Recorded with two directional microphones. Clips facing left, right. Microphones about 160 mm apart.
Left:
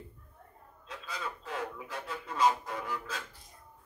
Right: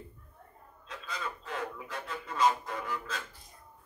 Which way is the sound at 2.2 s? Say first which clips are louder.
Even; 10° left (ahead or behind).